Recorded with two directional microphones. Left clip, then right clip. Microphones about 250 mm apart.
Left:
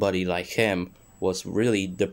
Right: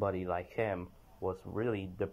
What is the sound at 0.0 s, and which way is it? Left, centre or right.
Speech, centre.